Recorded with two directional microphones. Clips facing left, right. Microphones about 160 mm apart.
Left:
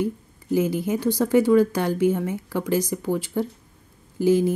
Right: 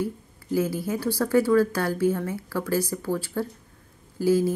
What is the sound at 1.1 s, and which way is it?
Speech, 20° left (ahead or behind).